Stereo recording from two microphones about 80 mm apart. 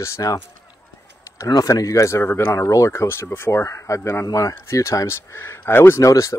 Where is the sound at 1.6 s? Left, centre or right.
Left.